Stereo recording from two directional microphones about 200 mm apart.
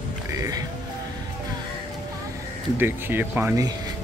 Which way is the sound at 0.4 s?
20° right (ahead or behind).